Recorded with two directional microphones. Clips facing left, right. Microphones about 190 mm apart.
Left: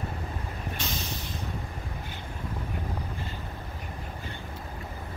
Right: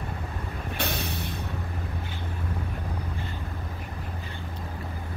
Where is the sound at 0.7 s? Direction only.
60° right (ahead or behind).